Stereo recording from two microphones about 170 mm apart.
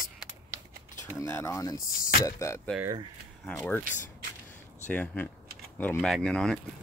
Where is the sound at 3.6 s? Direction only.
10° left (ahead or behind).